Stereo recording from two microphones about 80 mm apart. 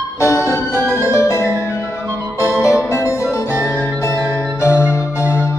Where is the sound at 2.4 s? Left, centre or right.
Left.